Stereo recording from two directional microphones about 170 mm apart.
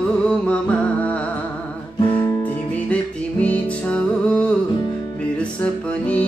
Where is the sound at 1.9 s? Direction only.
25° left (ahead or behind).